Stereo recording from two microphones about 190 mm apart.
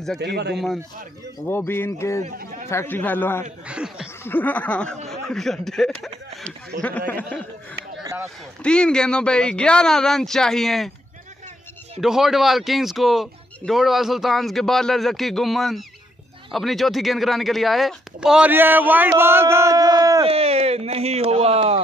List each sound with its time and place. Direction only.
0.2 s speech: 60° right (ahead or behind)
1.5 s a man's voice: 10° left (ahead or behind)
2.2 s speech: 40° right (ahead or behind)
2.7 s a man's voice: 10° left (ahead or behind)
3.6 s speech: 5° right (ahead or behind)
4.2 s a man's voice: 10° left (ahead or behind)
8.0 s a sound: 15° right (ahead or behind)
8.6 s speech: 5° left (ahead or behind)
12.0 s speech: centre (ahead or behind); by 20.2 s 20° right (ahead or behind)
20.2 s speech: 30° right (ahead or behind)